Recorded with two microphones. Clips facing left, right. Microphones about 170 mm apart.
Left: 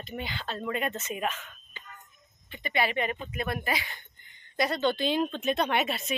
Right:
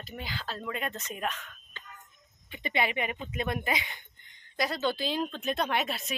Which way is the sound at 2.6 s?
20° right (ahead or behind).